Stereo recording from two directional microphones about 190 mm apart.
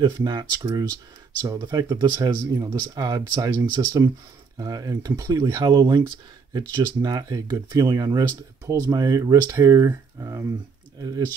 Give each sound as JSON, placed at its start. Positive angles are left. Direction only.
{"t": 0.0, "sound": "speech", "side_deg": -20}